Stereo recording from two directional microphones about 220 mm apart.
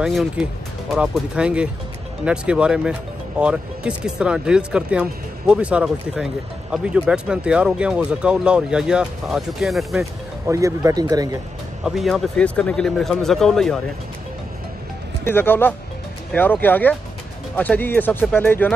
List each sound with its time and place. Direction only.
0.0 s speech: centre (ahead or behind)
10.4 s speech: 15° right (ahead or behind)
11.8 s speech: centre (ahead or behind)
15.2 s speech: 10° left (ahead or behind)